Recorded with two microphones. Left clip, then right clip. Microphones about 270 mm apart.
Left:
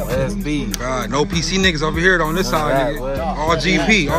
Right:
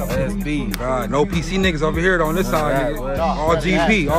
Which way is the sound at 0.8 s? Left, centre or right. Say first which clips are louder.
Right 1 dB; centre.